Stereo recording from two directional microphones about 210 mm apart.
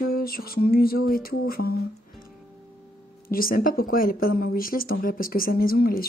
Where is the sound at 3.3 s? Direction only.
45° left (ahead or behind).